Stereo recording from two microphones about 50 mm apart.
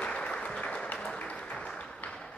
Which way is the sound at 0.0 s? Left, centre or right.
Left.